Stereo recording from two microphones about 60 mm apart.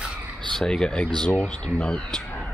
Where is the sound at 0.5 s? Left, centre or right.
Centre.